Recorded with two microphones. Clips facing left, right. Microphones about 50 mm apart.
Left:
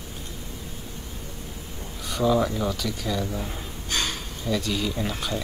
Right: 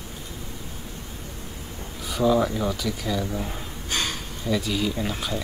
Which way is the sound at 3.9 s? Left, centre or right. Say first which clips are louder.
Even; right.